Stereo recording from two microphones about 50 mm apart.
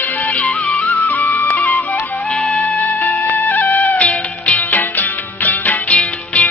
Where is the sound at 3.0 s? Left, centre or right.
Left.